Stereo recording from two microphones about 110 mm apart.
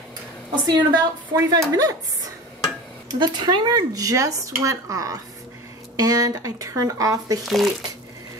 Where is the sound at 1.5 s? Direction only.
35° right (ahead or behind).